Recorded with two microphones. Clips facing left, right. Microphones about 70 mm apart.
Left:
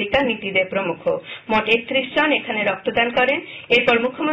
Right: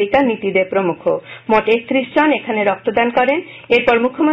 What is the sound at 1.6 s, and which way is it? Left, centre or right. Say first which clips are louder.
A woman's voice: right 5 dB; right.